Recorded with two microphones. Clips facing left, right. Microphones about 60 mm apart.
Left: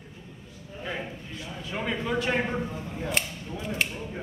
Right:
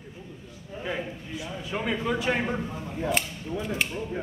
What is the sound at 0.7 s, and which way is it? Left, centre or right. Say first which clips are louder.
A man's voice: right 2 dB; centre.